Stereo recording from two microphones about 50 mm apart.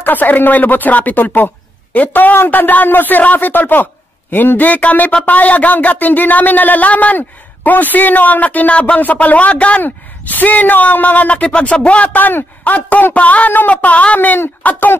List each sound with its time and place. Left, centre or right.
0.0 s speech: left